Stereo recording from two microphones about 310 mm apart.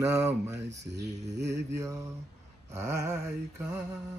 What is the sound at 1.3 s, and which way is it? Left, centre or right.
Mantra, right.